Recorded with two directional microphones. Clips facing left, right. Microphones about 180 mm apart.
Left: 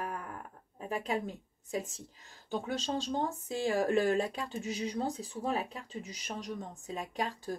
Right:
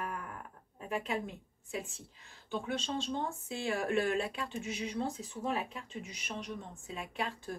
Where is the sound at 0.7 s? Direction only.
35° left (ahead or behind).